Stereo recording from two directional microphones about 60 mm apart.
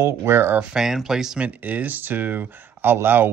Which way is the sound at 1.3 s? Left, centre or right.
Right.